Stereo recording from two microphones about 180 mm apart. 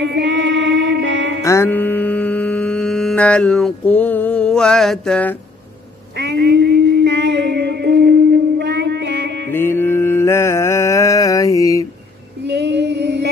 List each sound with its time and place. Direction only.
0.0 s mantra: 80° right
1.4 s mantra: 15° left (ahead or behind)
6.1 s a sound: 70° right (ahead or behind)
9.5 s mantra: 15° left (ahead or behind)
12.4 s female singing: 70° right (ahead or behind)